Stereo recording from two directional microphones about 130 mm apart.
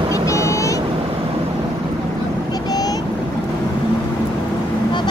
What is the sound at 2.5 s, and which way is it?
Vehicle, 30° left (ahead or behind).